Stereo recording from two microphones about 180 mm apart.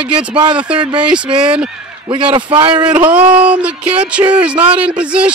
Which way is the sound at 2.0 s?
25° right (ahead or behind).